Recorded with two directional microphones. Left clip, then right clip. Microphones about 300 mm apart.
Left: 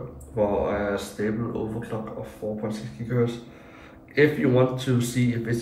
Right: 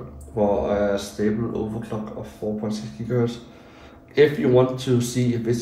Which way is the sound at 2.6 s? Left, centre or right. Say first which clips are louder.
Right 3 dB; centre.